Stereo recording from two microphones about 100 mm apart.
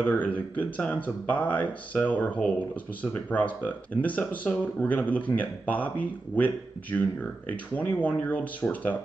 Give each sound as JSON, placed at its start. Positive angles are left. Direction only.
{"t": 0.0, "sound": "speech", "side_deg": 15}